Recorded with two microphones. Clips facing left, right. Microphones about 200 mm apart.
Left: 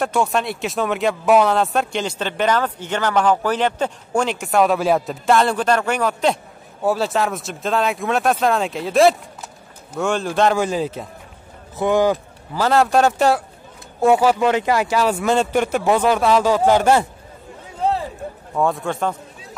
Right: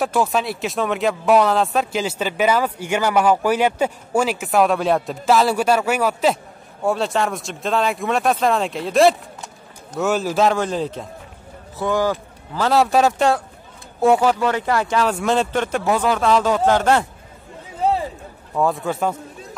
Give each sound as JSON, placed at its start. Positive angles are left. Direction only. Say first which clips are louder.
{"t": 0.0, "sound": "speech", "louder": "even", "side_deg": 0}
{"t": 11.8, "sound": "speech", "louder": "left 3 dB", "side_deg": 20}
{"t": 12.5, "sound": "speech", "louder": "even", "side_deg": 0}
{"t": 18.5, "sound": "speech", "louder": "even", "side_deg": 0}